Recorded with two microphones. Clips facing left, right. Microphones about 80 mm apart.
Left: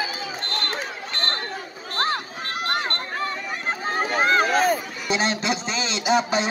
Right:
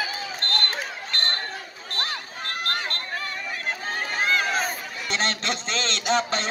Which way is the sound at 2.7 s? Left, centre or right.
Left.